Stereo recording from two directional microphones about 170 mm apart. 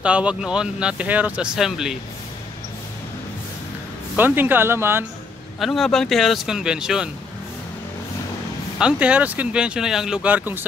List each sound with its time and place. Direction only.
0.0 s speech: 5° right (ahead or behind)
4.2 s speech: 10° right (ahead or behind)
5.6 s speech: centre (ahead or behind)
8.7 s speech: 5° right (ahead or behind)